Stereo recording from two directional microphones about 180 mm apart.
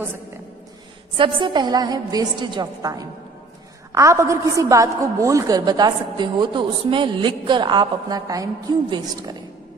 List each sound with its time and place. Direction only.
1.1 s a woman's voice: 25° right (ahead or behind)